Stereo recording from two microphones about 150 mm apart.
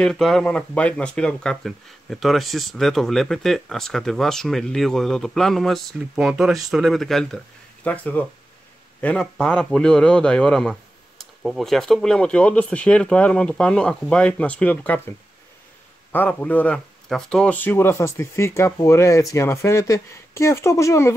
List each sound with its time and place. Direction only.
0.0 s speech: centre (ahead or behind)
16.1 s speech: 10° left (ahead or behind)